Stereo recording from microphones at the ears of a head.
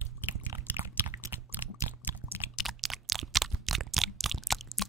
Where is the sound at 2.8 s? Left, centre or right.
Right.